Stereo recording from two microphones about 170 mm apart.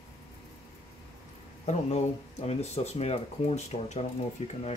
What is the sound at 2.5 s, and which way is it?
Speech, 40° left (ahead or behind).